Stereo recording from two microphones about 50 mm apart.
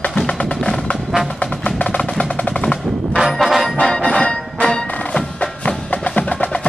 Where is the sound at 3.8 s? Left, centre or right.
Centre.